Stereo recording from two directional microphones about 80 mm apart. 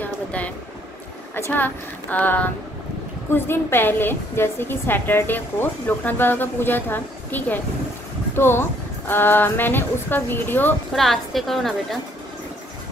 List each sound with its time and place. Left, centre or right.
0.0 s a sound: centre
1.3 s a woman's voice: left
10.9 s a woman's voice: centre